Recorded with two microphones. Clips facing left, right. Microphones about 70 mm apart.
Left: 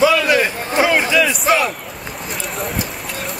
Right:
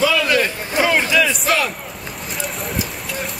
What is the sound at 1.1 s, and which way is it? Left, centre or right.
Crowd, centre.